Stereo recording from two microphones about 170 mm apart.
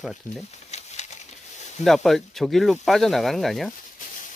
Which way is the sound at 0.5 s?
40° left (ahead or behind).